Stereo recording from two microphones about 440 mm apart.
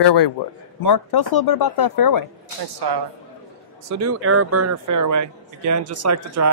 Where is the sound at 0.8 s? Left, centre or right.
Left.